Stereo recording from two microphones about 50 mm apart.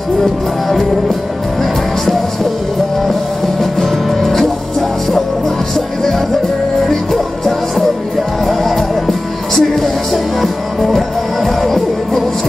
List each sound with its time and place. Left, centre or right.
0.2 s music: centre
3.8 s music: centre
6.9 s music: centre